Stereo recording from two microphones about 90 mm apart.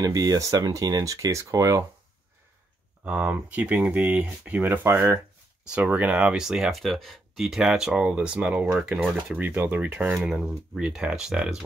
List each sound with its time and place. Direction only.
0.0 s speech: 45° right (ahead or behind)
3.1 s speech: 15° right (ahead or behind)
10.1 s speech: 5° right (ahead or behind)